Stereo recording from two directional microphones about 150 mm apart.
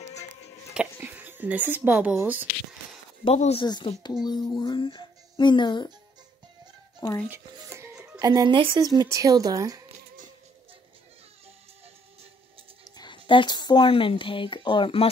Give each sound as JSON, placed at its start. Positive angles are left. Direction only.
{"t": 0.7, "sound": "speech", "side_deg": -10}
{"t": 3.3, "sound": "speech", "side_deg": 45}
{"t": 3.6, "sound": "speech", "side_deg": 30}
{"t": 7.2, "sound": "dishes", "side_deg": -15}
{"t": 8.2, "sound": "a woman's voice", "side_deg": -25}
{"t": 12.9, "sound": "speech", "side_deg": 30}